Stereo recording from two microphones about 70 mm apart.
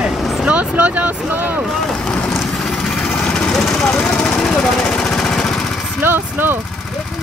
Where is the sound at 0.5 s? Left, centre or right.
Right.